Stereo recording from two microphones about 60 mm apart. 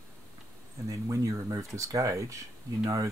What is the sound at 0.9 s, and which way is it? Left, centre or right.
Speech, right.